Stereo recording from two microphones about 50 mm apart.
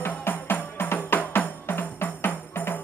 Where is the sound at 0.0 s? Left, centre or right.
Left.